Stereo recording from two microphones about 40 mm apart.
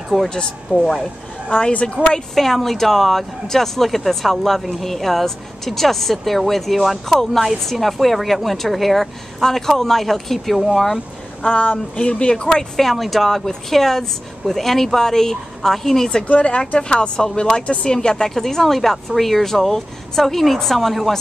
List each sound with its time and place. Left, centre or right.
0.1 s speech: centre
0.7 s speech: left
1.7 s speech: left
2.3 s speech: centre
11.4 s speech: left
12.7 s speech: centre
16.3 s speech: left; by 21.2 s centre